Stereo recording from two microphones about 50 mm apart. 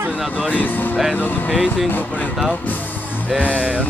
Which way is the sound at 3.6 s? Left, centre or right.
Right.